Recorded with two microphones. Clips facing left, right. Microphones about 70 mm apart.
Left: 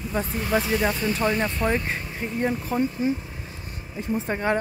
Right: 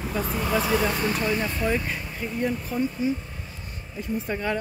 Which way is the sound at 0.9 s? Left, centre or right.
Right.